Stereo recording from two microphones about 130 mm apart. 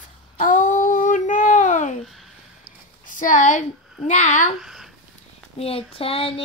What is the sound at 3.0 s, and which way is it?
A woman's voice, 90° left.